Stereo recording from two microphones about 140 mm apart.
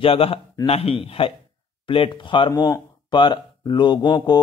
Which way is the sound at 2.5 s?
20° left (ahead or behind).